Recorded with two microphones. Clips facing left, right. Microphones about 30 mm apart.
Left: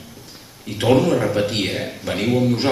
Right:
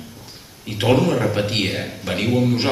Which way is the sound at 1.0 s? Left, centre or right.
Centre.